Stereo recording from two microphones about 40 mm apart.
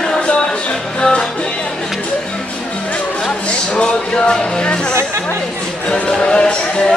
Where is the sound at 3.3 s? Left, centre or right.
Left.